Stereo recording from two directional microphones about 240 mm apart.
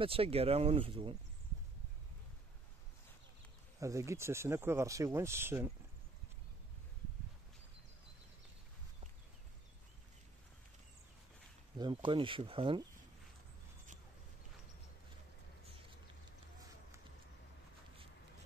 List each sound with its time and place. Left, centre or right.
0.0 s speech: right
3.8 s speech: centre
11.8 s speech: centre